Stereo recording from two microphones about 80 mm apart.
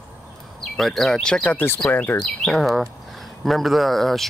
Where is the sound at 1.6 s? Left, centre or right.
Left.